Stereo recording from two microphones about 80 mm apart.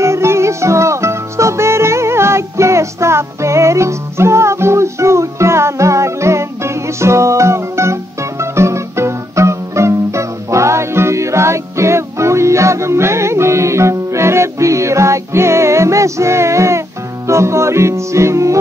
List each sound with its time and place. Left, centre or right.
0.0 s music: right